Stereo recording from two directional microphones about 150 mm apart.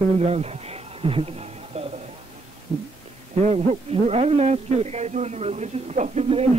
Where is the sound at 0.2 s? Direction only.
45° right (ahead or behind).